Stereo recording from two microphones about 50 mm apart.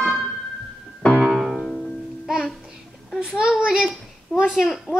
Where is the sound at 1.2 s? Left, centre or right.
Centre.